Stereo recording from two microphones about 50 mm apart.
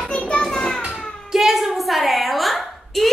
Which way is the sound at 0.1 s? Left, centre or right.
Centre.